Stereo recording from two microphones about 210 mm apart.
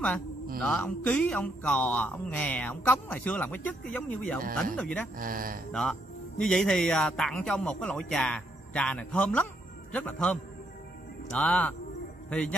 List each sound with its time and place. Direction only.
0.6 s speech: centre (ahead or behind)
5.1 s speech: 45° right (ahead or behind)
5.7 s a man's voice: 5° left (ahead or behind)